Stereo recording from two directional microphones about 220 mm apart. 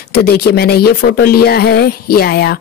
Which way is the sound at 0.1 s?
45° left (ahead or behind).